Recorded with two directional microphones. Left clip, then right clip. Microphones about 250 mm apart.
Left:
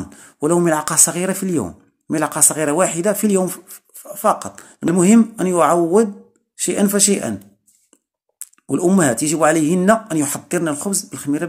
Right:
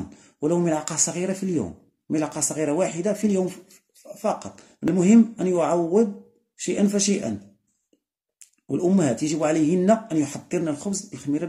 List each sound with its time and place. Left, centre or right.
0.2 s speech: centre
6.5 s speech: centre
8.4 s speech: centre